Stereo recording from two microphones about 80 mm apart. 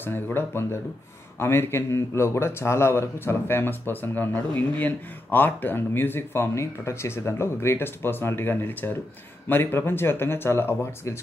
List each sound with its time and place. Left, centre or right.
0.0 s a man's voice: left